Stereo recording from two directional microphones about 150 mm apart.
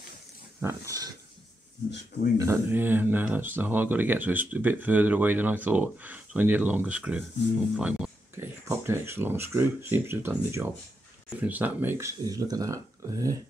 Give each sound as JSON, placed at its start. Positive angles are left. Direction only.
{"t": 0.6, "sound": "speech", "side_deg": -20}
{"t": 2.3, "sound": "speech", "side_deg": -20}
{"t": 8.4, "sound": "speech", "side_deg": -15}